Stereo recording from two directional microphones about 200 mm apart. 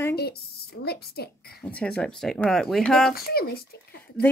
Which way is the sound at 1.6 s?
5° left (ahead or behind).